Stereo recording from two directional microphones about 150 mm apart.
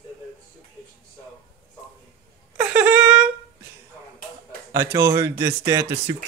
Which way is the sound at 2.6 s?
10° right (ahead or behind).